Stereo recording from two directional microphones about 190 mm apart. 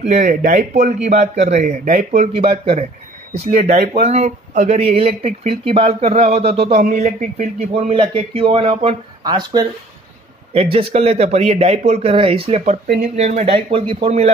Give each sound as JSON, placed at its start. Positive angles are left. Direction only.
{"t": 0.0, "sound": "speech", "side_deg": -40}
{"t": 4.0, "sound": "speech", "side_deg": -35}